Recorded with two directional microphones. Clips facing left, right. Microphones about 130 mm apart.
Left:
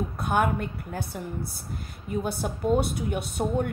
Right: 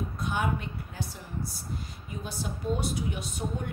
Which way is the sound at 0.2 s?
60° left (ahead or behind).